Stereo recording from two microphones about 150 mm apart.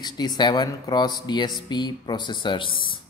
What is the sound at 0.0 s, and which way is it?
Speech, 30° left (ahead or behind).